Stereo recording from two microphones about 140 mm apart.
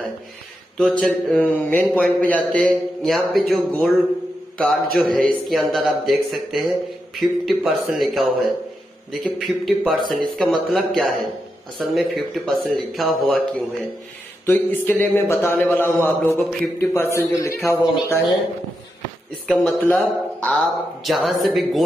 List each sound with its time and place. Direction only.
0.7 s a man's voice: 5° left (ahead or behind)
4.9 s speech: 5° left (ahead or behind)
14.4 s a man's voice: 15° left (ahead or behind)
19.4 s speech: 5° left (ahead or behind)